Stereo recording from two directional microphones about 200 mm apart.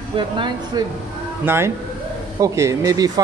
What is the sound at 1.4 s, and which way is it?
Speech, 10° right (ahead or behind).